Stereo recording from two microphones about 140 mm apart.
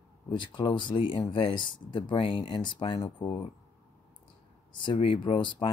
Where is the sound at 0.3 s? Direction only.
35° left (ahead or behind).